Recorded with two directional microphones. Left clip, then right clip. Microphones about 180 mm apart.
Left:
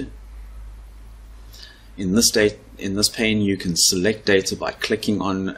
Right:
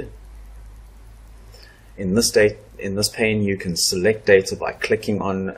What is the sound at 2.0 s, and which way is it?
Speech, 40° left (ahead or behind).